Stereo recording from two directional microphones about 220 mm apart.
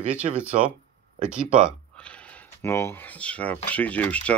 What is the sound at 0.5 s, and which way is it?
Speech, 30° right (ahead or behind).